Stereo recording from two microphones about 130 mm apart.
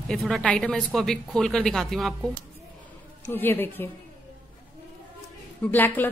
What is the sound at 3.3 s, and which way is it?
Speech, 15° left (ahead or behind).